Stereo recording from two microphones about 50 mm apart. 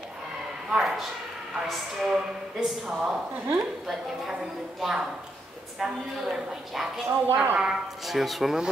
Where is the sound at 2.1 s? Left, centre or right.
Centre.